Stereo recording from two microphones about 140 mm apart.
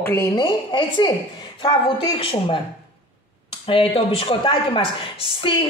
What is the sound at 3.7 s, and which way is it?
A woman's voice, 40° left (ahead or behind).